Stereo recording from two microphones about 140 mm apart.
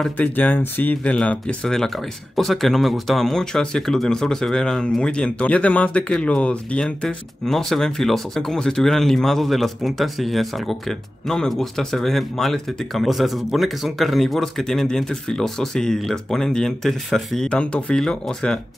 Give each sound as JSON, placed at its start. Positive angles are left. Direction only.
{"t": 0.0, "sound": "speech", "side_deg": 10}